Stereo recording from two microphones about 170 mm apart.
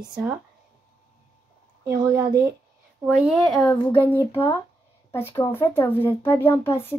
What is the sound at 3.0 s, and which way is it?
A woman's voice, centre (ahead or behind).